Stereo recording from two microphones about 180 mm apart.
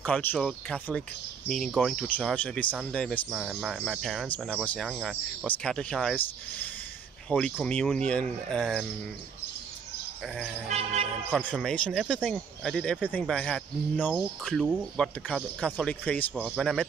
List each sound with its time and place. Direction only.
0.0 s speech: 10° left (ahead or behind)
7.2 s speech: 5° left (ahead or behind)
10.2 s speech: centre (ahead or behind)
10.7 s a man's voice: 40° right (ahead or behind)
11.3 s speech: 5° left (ahead or behind)